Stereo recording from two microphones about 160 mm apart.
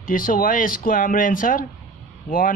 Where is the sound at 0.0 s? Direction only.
60° left (ahead or behind).